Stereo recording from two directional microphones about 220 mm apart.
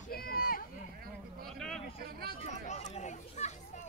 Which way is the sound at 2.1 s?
45° right (ahead or behind).